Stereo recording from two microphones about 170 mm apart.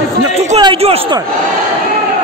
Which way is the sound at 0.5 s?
35° right (ahead or behind).